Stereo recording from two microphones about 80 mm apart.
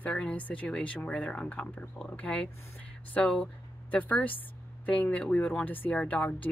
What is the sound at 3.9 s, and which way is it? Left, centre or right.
Speech, centre.